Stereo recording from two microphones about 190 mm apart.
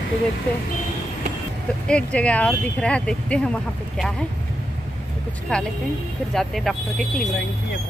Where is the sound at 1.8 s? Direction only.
5° left (ahead or behind).